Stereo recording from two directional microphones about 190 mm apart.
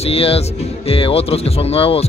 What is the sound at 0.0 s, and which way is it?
Speech, 30° left (ahead or behind).